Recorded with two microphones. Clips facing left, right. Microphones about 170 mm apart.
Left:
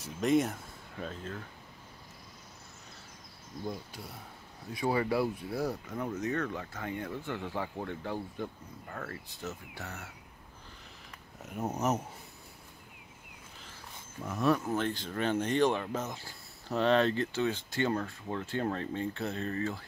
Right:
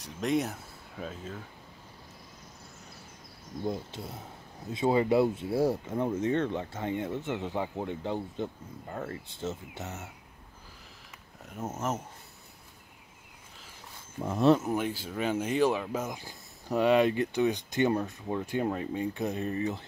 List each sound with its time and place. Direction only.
0.0 s speech: centre (ahead or behind)
3.6 s speech: 25° right (ahead or behind)
11.5 s speech: 10° left (ahead or behind)
14.2 s speech: 30° right (ahead or behind)